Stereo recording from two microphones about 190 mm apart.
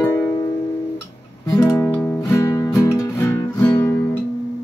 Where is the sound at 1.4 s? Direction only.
15° left (ahead or behind).